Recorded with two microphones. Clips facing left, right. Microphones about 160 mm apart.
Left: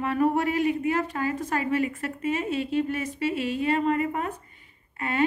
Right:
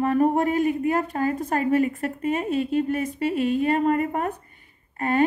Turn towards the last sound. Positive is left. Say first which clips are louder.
# right 4 dB
turn(degrees=-45)  # may be behind; listen again after turning